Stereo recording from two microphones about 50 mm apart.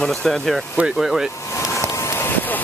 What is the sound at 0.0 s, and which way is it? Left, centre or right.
Speech, centre.